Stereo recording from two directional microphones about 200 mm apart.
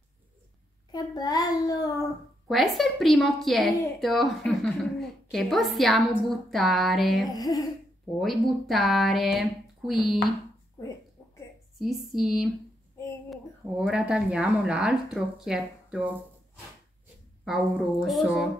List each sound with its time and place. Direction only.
0.9 s a child's voice: 20° left (ahead or behind)
2.4 s a woman's voice: centre (ahead or behind)
7.3 s speech: 20° left (ahead or behind)
8.2 s a woman's voice: centre (ahead or behind)
11.8 s a woman's voice: centre (ahead or behind)
17.5 s a woman's voice: centre (ahead or behind)